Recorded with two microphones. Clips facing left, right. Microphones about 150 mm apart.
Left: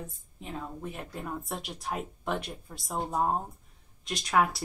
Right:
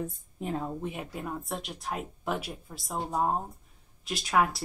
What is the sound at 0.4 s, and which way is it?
Speech, 45° right (ahead or behind).